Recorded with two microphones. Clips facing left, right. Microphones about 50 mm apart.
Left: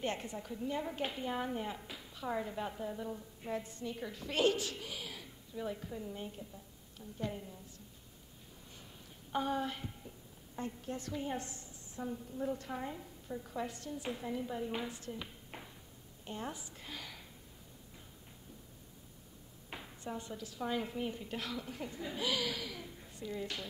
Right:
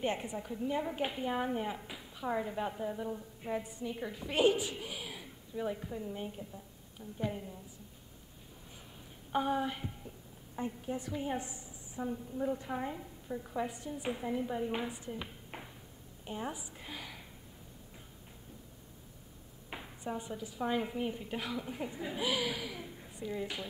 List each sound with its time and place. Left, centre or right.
0.0 s a woman's voice: centre
9.3 s a woman's voice: centre
19.7 s a woman's voice: centre